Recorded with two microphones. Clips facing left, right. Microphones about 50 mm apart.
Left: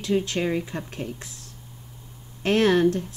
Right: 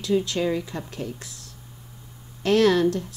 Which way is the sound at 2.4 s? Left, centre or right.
Left.